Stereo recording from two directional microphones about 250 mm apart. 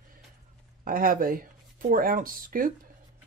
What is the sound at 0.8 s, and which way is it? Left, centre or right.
Speech, right.